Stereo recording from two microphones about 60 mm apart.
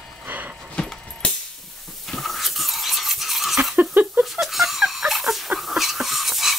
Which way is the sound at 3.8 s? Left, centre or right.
Right.